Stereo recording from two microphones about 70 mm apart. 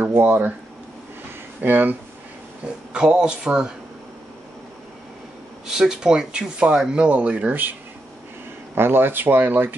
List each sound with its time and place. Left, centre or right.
0.0 s speech: right
1.6 s speech: right
2.6 s speech: centre
5.7 s speech: centre; by 7.7 s right
8.7 s speech: right